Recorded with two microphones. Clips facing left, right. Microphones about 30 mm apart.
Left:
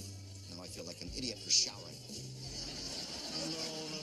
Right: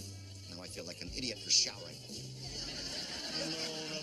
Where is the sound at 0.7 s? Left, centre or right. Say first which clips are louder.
Right 1 dB; right.